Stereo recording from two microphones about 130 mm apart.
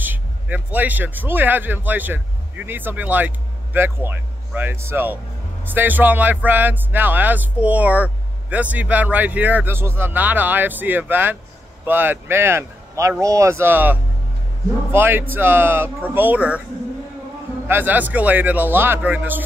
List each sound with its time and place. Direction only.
0.0 s speech: 15° right (ahead or behind)
17.6 s speech: 15° right (ahead or behind)